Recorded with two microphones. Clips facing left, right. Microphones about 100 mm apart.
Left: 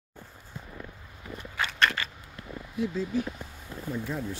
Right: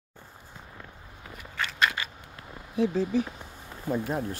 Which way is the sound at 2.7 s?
65° right (ahead or behind).